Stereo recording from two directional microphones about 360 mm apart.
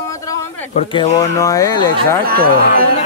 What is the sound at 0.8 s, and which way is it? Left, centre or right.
Speech, centre.